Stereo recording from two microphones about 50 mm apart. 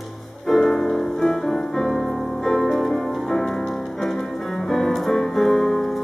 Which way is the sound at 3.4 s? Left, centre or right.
Centre.